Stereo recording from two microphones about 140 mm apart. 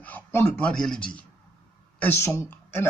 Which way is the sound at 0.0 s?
15° left (ahead or behind).